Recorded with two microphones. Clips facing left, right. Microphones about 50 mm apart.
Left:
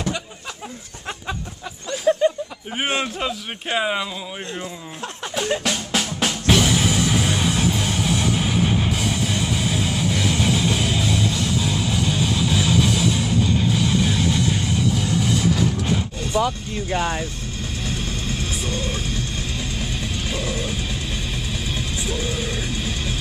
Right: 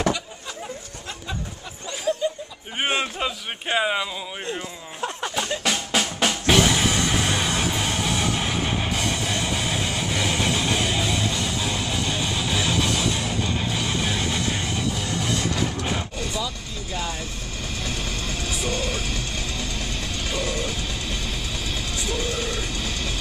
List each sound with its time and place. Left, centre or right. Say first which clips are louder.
2.2 s a sound: left 7 dB; left
2.8 s speech: left 1 dB; centre
5.6 s music: even; centre
15.0 s music: left 4 dB; centre
15.6 s a sound: left 4 dB; centre
16.3 s speech: left 8 dB; left
18.6 s music: even; right
19.8 s music: left 2 dB; centre